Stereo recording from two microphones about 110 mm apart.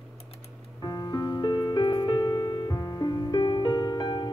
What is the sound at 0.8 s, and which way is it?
Music, 35° left (ahead or behind).